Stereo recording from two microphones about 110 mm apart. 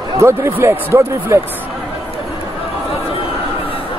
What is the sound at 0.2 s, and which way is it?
Speech, 25° right (ahead or behind).